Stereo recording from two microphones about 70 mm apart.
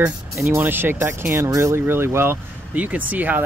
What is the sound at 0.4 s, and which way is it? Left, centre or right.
Speech, right.